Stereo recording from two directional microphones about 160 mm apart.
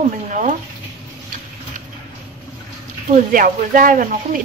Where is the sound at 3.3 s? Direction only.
60° right (ahead or behind).